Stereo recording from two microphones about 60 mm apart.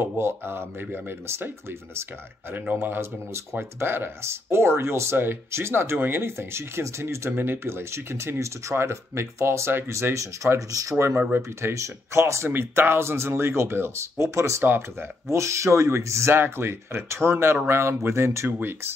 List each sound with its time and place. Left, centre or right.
0.0 s speech: right
7.2 s speech: right
11.7 s speech: right
14.6 s speech: right
15.3 s speech: right